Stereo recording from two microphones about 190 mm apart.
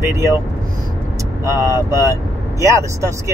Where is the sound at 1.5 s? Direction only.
15° right (ahead or behind).